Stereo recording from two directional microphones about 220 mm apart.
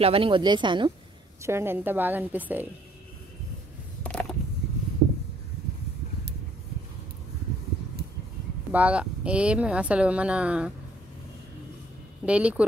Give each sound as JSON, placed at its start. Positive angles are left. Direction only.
{"t": 0.0, "sound": "speech", "side_deg": -25}
{"t": 1.4, "sound": "a woman's voice", "side_deg": -10}
{"t": 4.0, "sound": "creak", "side_deg": 5}
{"t": 8.7, "sound": "speech", "side_deg": -5}
{"t": 12.3, "sound": "speech", "side_deg": -5}